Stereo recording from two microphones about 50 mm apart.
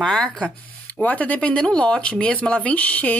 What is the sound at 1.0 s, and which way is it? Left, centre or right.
Speech, left.